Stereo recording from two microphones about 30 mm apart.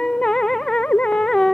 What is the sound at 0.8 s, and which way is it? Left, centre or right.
Music, left.